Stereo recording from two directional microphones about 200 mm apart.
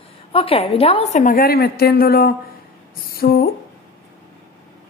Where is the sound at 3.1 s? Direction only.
50° left (ahead or behind).